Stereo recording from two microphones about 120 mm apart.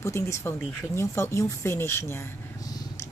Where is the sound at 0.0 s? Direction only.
20° left (ahead or behind).